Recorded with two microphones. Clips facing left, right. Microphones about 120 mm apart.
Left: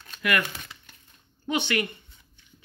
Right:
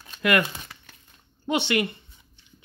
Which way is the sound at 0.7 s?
55° right (ahead or behind).